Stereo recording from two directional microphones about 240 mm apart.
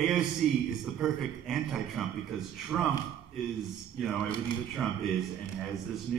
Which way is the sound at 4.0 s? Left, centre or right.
Centre.